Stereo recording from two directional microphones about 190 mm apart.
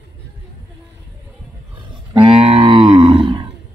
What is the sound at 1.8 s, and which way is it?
Cattle, 25° right (ahead or behind).